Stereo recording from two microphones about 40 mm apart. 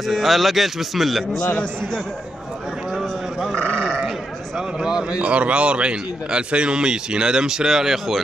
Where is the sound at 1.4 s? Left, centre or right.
Left.